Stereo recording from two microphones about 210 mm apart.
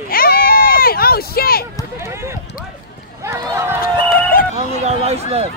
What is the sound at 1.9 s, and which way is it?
Speech, 10° right (ahead or behind).